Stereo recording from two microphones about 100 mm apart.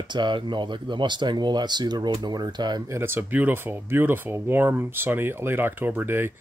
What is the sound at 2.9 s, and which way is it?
Speech, 25° right (ahead or behind).